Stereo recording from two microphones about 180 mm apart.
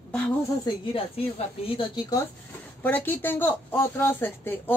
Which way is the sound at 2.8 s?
10° left (ahead or behind).